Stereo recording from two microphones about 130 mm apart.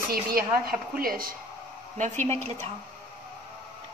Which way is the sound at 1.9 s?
70° right (ahead or behind).